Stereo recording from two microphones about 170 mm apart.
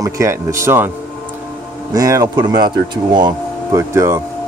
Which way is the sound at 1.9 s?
20° right (ahead or behind).